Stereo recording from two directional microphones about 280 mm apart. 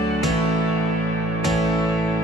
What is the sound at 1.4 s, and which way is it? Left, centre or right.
Music, centre.